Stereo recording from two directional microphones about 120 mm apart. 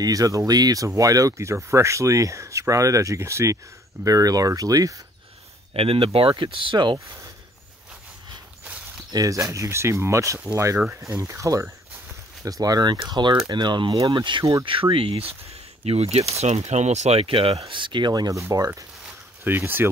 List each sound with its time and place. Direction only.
0.0 s speech: 30° right (ahead or behind)
5.7 s speech: 50° right (ahead or behind)
9.1 s speech: 30° right (ahead or behind)
19.0 s a sound: 15° right (ahead or behind)